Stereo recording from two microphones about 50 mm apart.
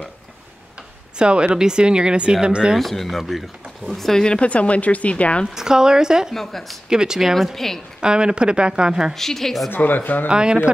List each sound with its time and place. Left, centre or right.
1.1 s speech: centre
2.8 s speech: centre
4.2 s speech: left
5.5 s speech: centre
6.3 s speech: centre
6.9 s speech: centre
7.5 s a woman's voice: centre
8.0 s speech: centre
9.1 s speech: centre
9.7 s speech: left
10.2 s speech: centre